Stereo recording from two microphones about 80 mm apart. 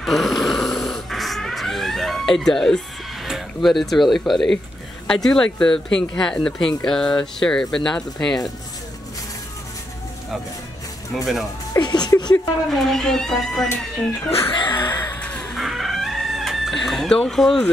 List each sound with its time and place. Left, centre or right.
0.0 s snoring: centre
3.3 s speech: centre
11.1 s speech: centre
11.8 s a sound: left
12.6 s speech: centre
14.5 s a sound: left
15.1 s crow: centre
15.5 s chicken: centre